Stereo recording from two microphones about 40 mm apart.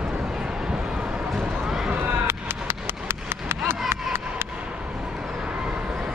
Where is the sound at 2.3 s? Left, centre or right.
Right.